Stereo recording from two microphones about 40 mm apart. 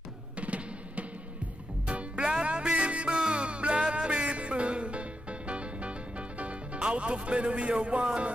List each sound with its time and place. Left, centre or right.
0.4 s music: right
7.2 s speech: right